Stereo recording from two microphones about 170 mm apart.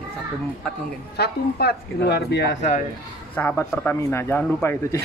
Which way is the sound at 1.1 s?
75° left (ahead or behind).